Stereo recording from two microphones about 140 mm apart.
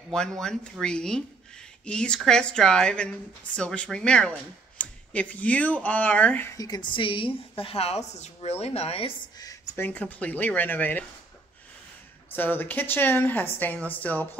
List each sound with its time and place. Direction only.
0.1 s a woman's voice: 5° left (ahead or behind)
6.5 s a woman's voice: 25° left (ahead or behind); by 9.1 s 45° left (ahead or behind)
9.4 s speech: 25° left (ahead or behind)
9.8 s a woman's voice: 10° left (ahead or behind)
12.3 s a woman's voice: 15° left (ahead or behind)